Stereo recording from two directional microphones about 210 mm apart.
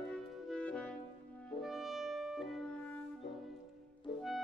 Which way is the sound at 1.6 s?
Centre (ahead or behind).